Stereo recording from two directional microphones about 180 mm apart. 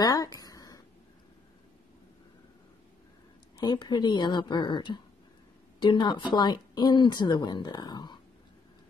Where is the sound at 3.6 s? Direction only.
25° left (ahead or behind).